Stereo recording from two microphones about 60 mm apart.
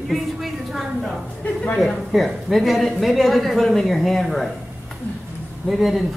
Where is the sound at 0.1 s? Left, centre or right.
Centre.